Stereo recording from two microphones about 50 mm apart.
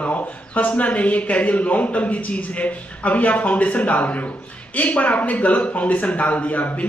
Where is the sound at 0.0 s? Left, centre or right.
Left.